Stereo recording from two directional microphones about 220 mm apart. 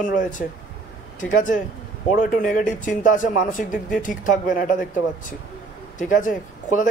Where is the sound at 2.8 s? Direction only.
35° left (ahead or behind).